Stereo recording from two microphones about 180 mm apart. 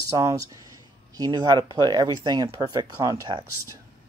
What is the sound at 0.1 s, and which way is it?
Speech, 20° right (ahead or behind).